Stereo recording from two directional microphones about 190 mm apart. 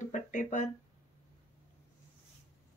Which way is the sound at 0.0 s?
40° left (ahead or behind).